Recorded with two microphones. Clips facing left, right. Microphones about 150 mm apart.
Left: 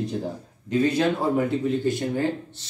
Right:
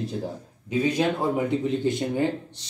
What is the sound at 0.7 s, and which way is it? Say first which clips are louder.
Speech: left 2 dB; 15° right (ahead or behind).